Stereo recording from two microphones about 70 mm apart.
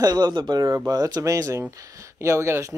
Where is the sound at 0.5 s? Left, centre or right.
Right.